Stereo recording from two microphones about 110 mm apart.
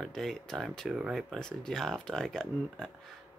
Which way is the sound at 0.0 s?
5° left (ahead or behind).